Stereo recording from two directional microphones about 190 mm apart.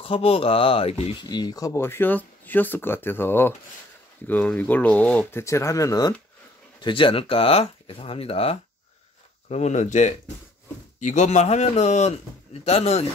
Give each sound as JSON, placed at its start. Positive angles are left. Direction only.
{"t": 0.0, "sound": "speech", "side_deg": 30}